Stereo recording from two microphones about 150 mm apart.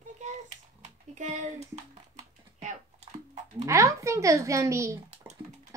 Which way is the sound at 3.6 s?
20° right (ahead or behind).